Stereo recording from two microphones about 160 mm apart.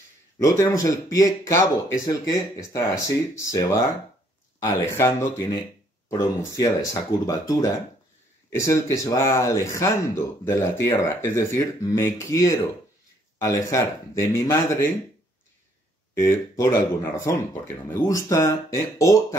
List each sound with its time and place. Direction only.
0.4 s speech: 20° left (ahead or behind)
16.2 s speech: 20° left (ahead or behind)